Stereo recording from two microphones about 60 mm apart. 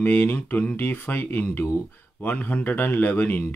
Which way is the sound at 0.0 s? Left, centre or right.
Left.